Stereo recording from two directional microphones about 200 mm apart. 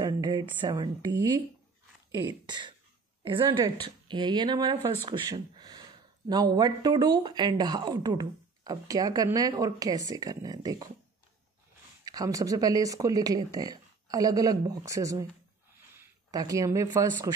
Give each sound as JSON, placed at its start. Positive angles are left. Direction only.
{"t": 0.0, "sound": "speech", "side_deg": -20}
{"t": 12.0, "sound": "speech", "side_deg": -20}